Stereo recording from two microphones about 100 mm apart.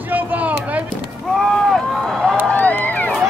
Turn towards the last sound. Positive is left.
turn(degrees=15)  # may be behind; listen again after turning